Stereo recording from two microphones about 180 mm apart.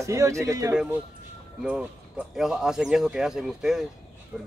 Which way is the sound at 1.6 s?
5° right (ahead or behind).